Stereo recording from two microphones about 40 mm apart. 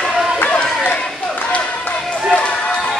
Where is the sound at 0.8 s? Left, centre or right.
Left.